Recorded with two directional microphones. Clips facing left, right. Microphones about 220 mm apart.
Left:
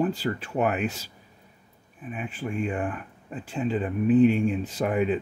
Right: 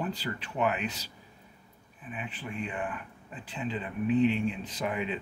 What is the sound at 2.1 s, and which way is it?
Speech, 45° left (ahead or behind).